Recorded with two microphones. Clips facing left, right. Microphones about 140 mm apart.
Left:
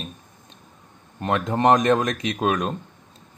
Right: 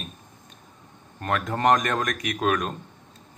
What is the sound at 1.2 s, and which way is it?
Speech, 20° left (ahead or behind).